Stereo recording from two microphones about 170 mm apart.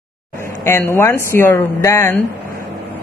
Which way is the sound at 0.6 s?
15° left (ahead or behind).